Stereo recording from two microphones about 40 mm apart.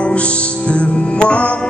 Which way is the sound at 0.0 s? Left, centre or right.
Left.